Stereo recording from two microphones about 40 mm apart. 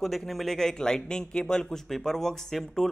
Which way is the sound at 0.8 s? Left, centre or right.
Centre.